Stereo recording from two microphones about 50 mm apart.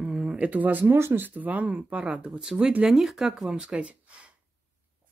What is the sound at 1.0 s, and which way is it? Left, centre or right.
Speech, right.